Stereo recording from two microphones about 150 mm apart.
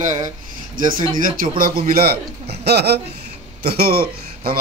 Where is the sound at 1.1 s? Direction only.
65° right (ahead or behind).